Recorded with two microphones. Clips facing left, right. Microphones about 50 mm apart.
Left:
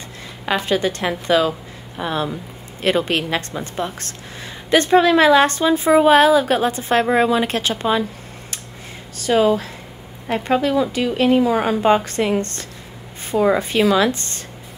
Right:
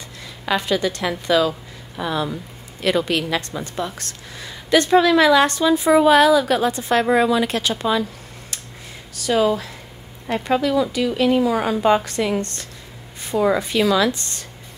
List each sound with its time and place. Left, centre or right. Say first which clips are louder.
0.7 s a woman's voice: left 2 dB; left
9.1 s a woman's voice: left 2 dB; left